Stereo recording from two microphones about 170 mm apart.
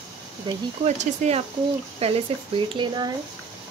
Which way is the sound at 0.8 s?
40° right (ahead or behind).